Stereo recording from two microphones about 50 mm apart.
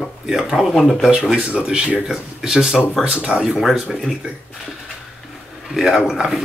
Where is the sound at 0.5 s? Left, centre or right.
Centre.